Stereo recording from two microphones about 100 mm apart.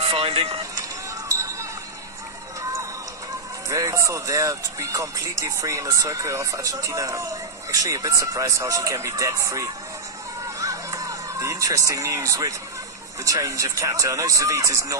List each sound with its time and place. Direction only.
0.0 s speech: 65° right (ahead or behind)
1.3 s music: 30° right (ahead or behind)
3.6 s speech: 35° right (ahead or behind)
10.4 s a sound: 35° right (ahead or behind)
13.2 s speech: 35° right (ahead or behind)